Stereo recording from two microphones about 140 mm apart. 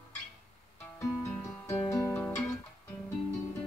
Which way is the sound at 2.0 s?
15° left (ahead or behind).